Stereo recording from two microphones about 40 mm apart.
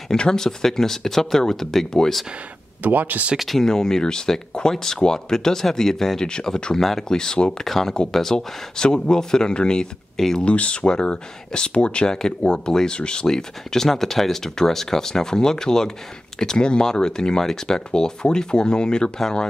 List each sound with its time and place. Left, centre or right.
0.1 s speech: centre
2.8 s speech: right
3.3 s speech: centre
3.6 s speech: centre
6.8 s speech: centre
7.1 s speech: centre
7.6 s speech: centre
10.4 s speech: left; by 19.4 s centre